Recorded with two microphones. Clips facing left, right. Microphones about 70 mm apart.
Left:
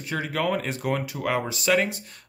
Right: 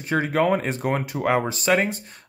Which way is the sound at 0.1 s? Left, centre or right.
Right.